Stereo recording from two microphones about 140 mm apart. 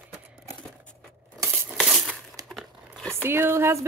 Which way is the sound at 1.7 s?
5° right (ahead or behind).